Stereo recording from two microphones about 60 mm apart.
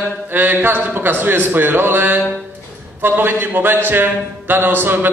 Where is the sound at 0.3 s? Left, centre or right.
Right.